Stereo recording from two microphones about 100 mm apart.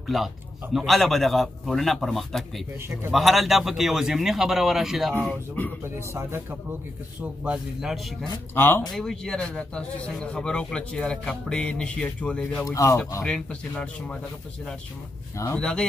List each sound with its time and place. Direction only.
0.0 s a man's voice: centre (ahead or behind)
5.2 s speech: 10° left (ahead or behind)
5.9 s a man's voice: 25° right (ahead or behind)
7.2 s a man's voice: 10° right (ahead or behind)
8.5 s speech: 25° left (ahead or behind)
8.9 s speech: 5° left (ahead or behind)
12.6 s speech: 35° left (ahead or behind)
13.2 s speech: 10° left (ahead or behind)
15.5 s speech: 10° left (ahead or behind)